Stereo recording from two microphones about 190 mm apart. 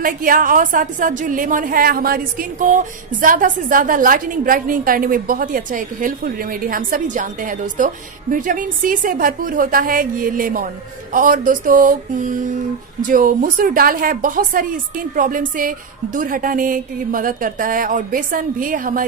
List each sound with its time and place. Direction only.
0.0 s a woman's voice: 45° right (ahead or behind)